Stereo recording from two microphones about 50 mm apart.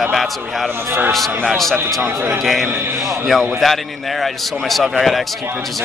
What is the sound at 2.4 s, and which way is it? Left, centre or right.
Speech, centre.